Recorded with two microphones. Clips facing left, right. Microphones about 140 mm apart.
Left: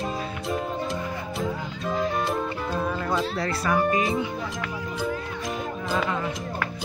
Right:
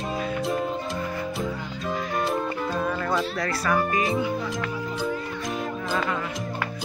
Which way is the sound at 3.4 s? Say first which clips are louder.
Even; 25° left (ahead or behind).